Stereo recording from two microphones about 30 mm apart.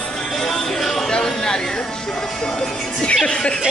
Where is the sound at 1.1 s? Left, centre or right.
Left.